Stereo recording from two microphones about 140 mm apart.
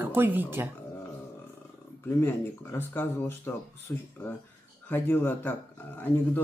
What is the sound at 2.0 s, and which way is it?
Speech, 15° left (ahead or behind).